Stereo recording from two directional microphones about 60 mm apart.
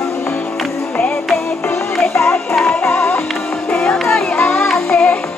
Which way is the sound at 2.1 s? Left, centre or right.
Left.